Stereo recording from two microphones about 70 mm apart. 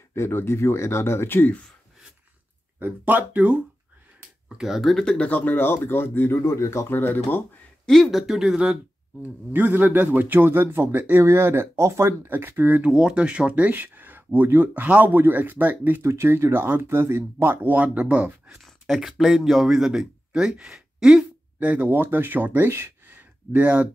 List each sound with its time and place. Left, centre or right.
0.1 s speech: left
2.8 s speech: right
4.6 s speech: centre
4.9 s speech: centre; by 6.3 s left
6.3 s speech: left
6.9 s speech: left
7.8 s speech: centre
9.2 s speech: right
12.3 s speech: right
12.9 s speech: centre
18.6 s speech: centre
21.6 s speech: right
22.8 s a sound: right